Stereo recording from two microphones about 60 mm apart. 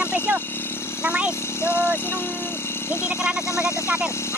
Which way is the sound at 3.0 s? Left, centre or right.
Centre.